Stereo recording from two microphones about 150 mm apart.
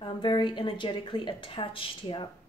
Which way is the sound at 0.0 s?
35° left (ahead or behind).